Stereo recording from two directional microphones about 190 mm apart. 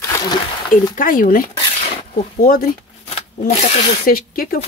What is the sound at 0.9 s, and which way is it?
Speech, 45° left (ahead or behind).